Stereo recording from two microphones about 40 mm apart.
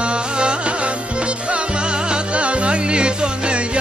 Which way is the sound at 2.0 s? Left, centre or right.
Right.